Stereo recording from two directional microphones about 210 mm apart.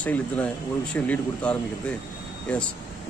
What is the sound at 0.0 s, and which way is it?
Speech, 5° left (ahead or behind).